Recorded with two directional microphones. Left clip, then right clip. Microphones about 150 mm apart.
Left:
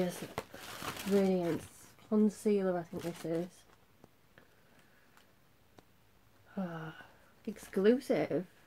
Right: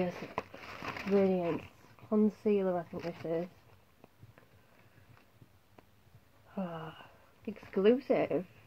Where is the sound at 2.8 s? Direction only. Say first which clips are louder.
Right 1 dB; 40° left (ahead or behind).